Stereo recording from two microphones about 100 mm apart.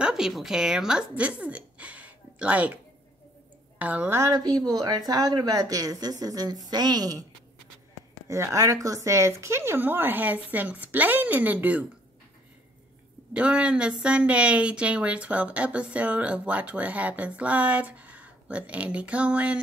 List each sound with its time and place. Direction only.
0.0 s a woman's voice: 5° right (ahead or behind)
4.1 s speech: 30° right (ahead or behind)
4.4 s speech: 40° right (ahead or behind)
8.3 s speech: 30° right (ahead or behind)
13.3 s a woman's voice: 10° right (ahead or behind)